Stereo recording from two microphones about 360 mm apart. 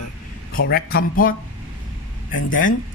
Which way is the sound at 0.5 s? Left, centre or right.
Left.